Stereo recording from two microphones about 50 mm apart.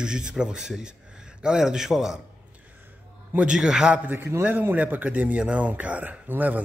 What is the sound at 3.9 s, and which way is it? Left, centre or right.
Speech, right.